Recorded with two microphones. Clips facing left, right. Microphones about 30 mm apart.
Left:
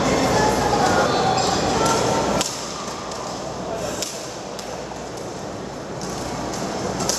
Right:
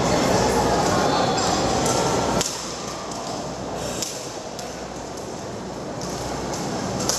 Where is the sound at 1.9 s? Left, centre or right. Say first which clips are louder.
Left 2 dB; centre.